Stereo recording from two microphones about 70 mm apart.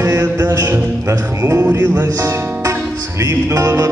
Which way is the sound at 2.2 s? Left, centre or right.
Right.